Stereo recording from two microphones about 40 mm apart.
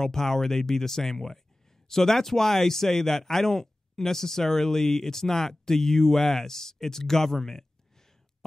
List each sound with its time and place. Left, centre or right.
0.0 s speech: centre